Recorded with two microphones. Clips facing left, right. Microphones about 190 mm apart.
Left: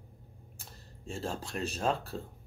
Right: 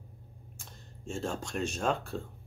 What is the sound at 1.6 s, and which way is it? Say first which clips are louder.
Speech: even; 35° left (ahead or behind).